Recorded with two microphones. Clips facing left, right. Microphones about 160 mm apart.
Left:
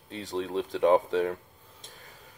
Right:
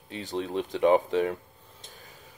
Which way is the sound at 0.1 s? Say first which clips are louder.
Even; centre (ahead or behind).